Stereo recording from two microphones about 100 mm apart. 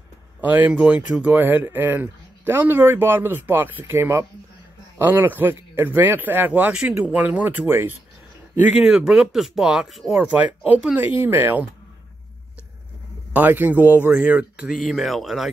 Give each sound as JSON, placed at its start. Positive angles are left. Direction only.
{"t": 0.4, "sound": "speech", "side_deg": -15}
{"t": 8.9, "sound": "speech", "side_deg": -5}
{"t": 11.0, "sound": "speech", "side_deg": -20}
{"t": 13.3, "sound": "speech", "side_deg": -20}
{"t": 14.7, "sound": "speech", "side_deg": 0}